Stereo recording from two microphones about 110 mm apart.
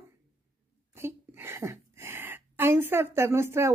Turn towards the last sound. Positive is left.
turn(degrees=-25)  # may be behind; listen again after turning